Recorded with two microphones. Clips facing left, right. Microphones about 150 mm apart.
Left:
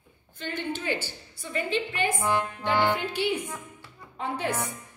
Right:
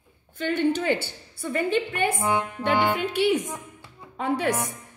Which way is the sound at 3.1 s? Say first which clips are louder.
Right 6 dB; 80° right.